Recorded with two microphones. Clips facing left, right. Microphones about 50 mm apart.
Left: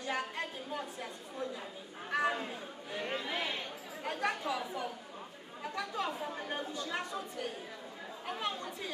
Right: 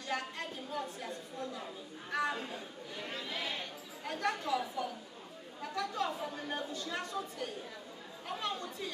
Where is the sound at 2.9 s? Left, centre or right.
Left.